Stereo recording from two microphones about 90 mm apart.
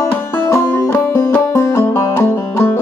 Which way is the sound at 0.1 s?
30° left (ahead or behind).